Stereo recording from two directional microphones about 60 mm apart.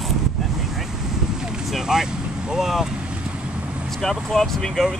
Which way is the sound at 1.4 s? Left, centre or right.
Centre.